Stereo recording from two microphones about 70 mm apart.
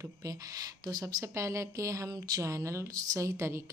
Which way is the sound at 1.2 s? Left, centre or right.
Right.